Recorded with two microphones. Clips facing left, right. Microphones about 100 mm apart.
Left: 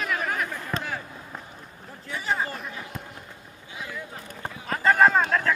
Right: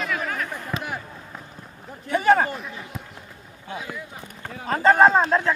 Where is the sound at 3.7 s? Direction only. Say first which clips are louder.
Right 6 dB; 55° right (ahead or behind).